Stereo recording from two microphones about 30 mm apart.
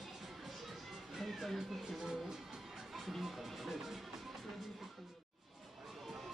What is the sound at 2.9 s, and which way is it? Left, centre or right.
Music, centre.